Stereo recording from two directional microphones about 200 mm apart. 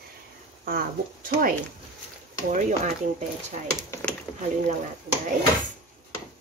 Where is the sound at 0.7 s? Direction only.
45° right (ahead or behind).